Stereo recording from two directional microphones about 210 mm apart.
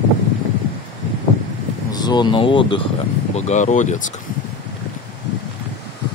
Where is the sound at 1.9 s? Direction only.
20° left (ahead or behind); by 4.0 s 35° left (ahead or behind).